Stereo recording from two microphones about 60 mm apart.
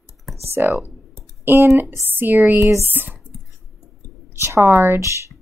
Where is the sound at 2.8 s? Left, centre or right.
Right.